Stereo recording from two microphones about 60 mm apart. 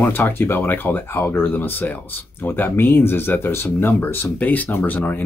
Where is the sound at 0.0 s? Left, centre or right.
Left.